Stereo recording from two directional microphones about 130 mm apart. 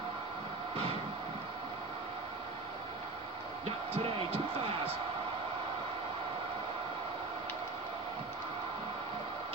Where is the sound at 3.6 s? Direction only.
45° right (ahead or behind).